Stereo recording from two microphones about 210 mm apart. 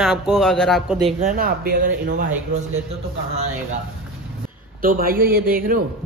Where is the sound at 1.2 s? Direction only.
40° right (ahead or behind).